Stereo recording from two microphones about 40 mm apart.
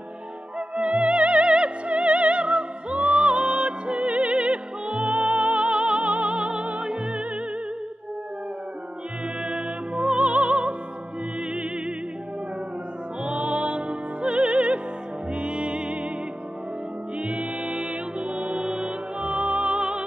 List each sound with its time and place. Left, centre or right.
0.6 s music: right
9.4 s music: right
13.2 s music: right
17.2 s music: right